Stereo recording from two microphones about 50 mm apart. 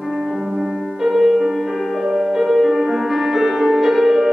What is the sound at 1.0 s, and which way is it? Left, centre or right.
Music, centre.